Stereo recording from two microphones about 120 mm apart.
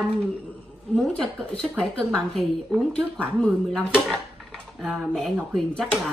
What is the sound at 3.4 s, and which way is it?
Dishes, centre (ahead or behind).